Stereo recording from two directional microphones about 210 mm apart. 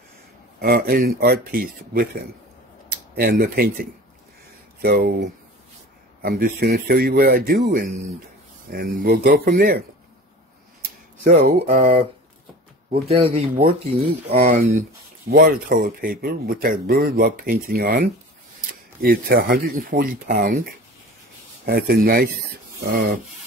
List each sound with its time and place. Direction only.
0.6 s speech: 45° right (ahead or behind)
3.2 s speech: 45° right (ahead or behind)
11.7 s speech: 35° right (ahead or behind)
13.1 s speech: 30° right (ahead or behind)
21.6 s speech: 50° right (ahead or behind)